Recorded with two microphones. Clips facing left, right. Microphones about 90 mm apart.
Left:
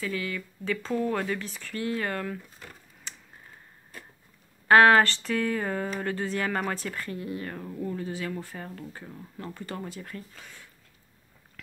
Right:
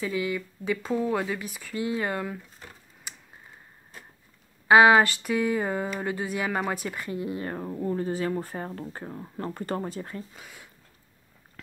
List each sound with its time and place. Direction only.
0.0 s speech: 15° right (ahead or behind)
3.1 s tick-tock: 10° right (ahead or behind)
4.6 s speech: 10° right (ahead or behind); by 10.1 s 35° right (ahead or behind)
10.1 s speech: 15° right (ahead or behind)